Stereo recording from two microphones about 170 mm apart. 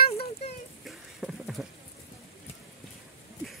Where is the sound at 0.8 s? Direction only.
Centre (ahead or behind).